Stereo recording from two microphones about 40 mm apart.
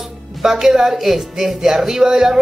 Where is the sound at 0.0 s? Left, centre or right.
Centre.